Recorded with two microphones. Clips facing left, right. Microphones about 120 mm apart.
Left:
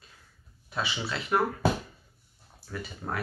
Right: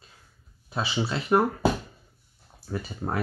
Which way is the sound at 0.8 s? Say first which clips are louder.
Right 4 dB; 35° right (ahead or behind).